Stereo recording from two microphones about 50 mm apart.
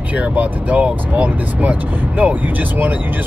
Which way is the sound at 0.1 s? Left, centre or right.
Right.